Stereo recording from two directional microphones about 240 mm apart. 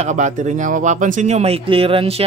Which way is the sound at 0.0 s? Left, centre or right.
Right.